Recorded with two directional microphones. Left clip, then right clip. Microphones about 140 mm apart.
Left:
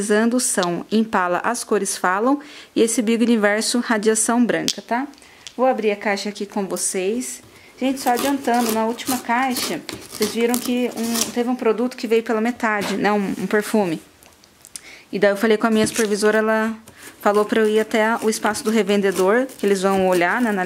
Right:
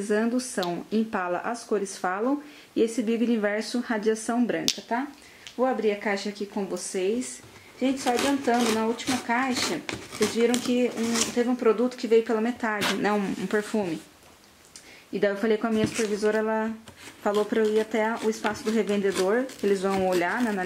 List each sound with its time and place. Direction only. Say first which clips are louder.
0.0 s speech: left 7 dB; 35° left (ahead or behind)
8.4 s speech: left 4 dB; 10° left (ahead or behind)
8.7 s speech: left 5 dB; 30° left (ahead or behind)
9.6 s speech: left 3 dB; 15° left (ahead or behind)
11.0 s speech: left 3 dB; 10° left (ahead or behind)
11.3 s speech: left 3 dB; 25° left (ahead or behind)
13.0 s speech: left 6 dB; 20° left (ahead or behind)
15.1 s speech: left 8 dB; 35° left (ahead or behind)